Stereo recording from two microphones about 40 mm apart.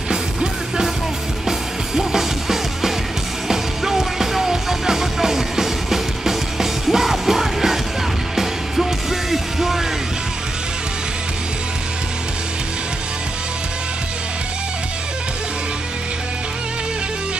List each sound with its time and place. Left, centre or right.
0.1 s music: centre
2.0 s music: centre